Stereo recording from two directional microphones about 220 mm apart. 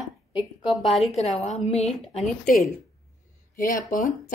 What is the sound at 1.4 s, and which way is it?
Speech, 30° left (ahead or behind).